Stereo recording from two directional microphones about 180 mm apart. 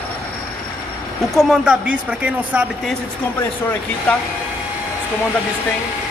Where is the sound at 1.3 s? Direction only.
5° right (ahead or behind).